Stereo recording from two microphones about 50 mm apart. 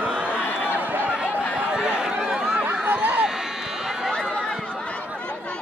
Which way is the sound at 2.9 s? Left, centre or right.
Right.